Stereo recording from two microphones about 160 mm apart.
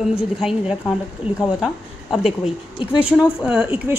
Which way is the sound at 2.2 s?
40° left (ahead or behind).